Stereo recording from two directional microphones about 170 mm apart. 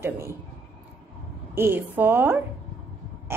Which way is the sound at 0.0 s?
15° right (ahead or behind).